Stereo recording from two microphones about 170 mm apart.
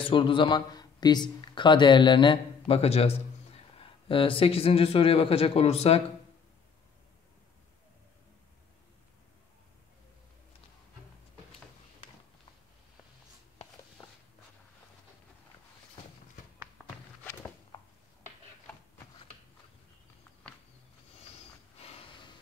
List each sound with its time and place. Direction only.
0.0 s a man's voice: 30° left (ahead or behind)
17.2 s walk: 15° left (ahead or behind)